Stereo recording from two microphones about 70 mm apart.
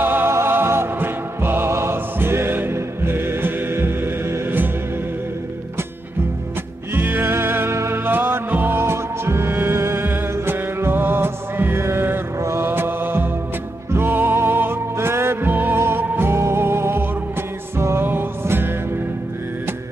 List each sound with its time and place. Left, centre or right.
0.0 s music: right
7.0 s music: right